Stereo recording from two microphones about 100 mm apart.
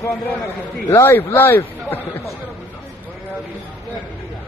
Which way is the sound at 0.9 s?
25° left (ahead or behind).